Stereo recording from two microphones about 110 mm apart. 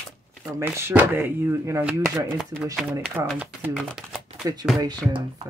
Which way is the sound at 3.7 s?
5° right (ahead or behind).